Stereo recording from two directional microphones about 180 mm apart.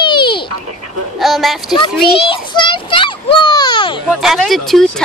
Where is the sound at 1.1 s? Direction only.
Centre (ahead or behind).